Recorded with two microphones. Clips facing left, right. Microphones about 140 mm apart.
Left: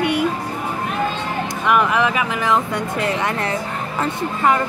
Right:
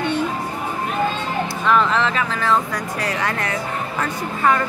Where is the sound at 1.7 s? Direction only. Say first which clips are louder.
Left 1 dB; 15° left (ahead or behind).